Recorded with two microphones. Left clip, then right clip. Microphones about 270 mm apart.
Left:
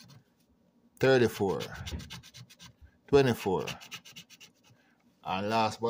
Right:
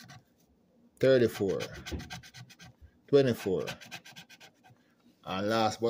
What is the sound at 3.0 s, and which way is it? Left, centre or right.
Speech, centre.